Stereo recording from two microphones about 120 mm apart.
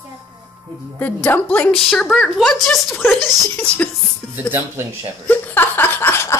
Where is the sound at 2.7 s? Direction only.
20° left (ahead or behind).